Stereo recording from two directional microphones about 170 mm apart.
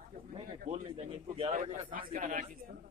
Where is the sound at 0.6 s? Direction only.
40° right (ahead or behind).